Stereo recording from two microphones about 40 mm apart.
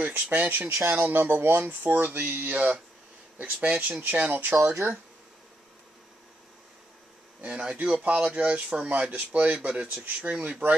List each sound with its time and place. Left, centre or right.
0.0 s speech: right
0.5 s speech: right
2.4 s speech: right
4.4 s speech: right
7.4 s speech: right
8.8 s speech: right